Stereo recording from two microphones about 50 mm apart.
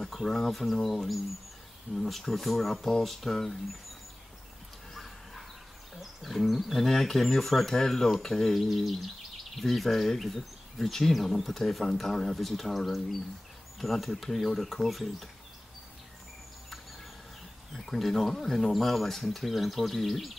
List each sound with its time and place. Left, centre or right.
0.0 s speech: centre
4.9 s dog: centre
5.9 s speech: centre
17.7 s speech: centre